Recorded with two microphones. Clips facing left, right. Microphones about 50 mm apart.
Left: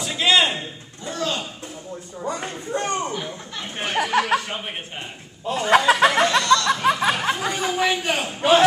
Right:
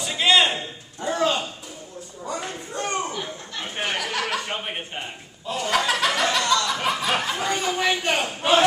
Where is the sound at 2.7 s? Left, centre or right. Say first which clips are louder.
Left 3 dB; left.